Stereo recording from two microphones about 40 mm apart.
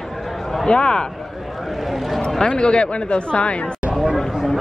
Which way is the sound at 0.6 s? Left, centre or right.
Left.